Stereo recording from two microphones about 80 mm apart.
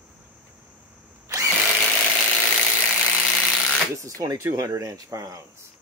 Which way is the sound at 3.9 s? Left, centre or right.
Right.